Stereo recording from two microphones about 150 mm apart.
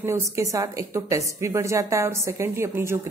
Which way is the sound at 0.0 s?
20° right (ahead or behind).